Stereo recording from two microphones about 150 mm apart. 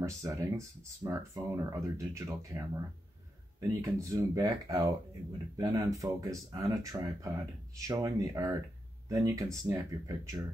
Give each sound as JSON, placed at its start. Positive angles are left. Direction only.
{"t": 0.0, "sound": "speech", "side_deg": -20}
{"t": 3.8, "sound": "speech", "side_deg": -20}